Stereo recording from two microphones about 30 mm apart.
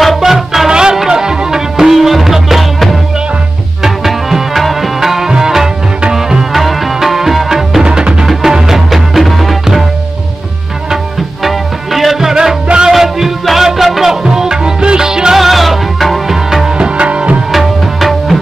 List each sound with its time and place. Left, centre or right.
0.2 s music: centre
0.7 s music: right
1.9 s music: centre
3.8 s music: centre
4.6 s music: centre
5.0 s music: centre
6.5 s music: centre
7.8 s music: right
8.3 s music: centre
11.4 s music: centre
14.2 s music: centre
15.3 s music: centre
16.7 s music: right
17.5 s tabla: centre